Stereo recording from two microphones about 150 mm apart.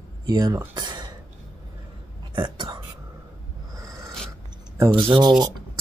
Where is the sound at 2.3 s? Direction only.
30° right (ahead or behind).